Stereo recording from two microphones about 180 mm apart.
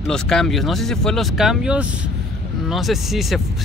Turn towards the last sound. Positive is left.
turn(degrees=0)  # may be behind; listen again after turning